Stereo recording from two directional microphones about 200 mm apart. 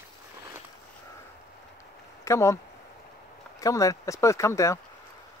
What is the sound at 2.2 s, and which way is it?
Speech, 15° left (ahead or behind).